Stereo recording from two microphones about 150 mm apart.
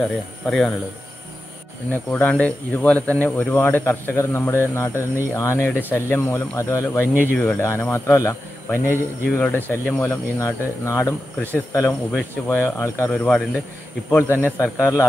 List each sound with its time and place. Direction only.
0.5 s speech: 5° left (ahead or behind)
1.9 s speech: 10° left (ahead or behind)
13.1 s speech: 5° left (ahead or behind)